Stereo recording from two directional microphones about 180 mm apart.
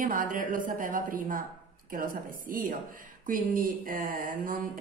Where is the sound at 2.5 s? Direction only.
50° right (ahead or behind).